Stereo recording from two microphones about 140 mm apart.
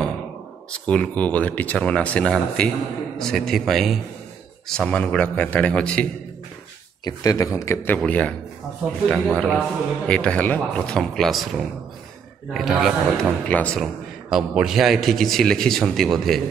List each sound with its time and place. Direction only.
0.7 s a man's voice: 10° left (ahead or behind)
7.1 s a man's voice: 25° left (ahead or behind); by 13.3 s centre (ahead or behind)
13.5 s a man's voice: 10° left (ahead or behind)
14.3 s a man's voice: 5° right (ahead or behind)